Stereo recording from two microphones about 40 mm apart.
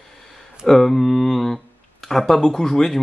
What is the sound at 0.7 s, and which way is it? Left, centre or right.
Speech, centre.